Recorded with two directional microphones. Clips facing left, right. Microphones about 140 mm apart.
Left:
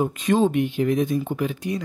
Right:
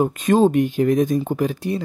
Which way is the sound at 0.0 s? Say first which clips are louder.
Right 4 dB; 45° right (ahead or behind).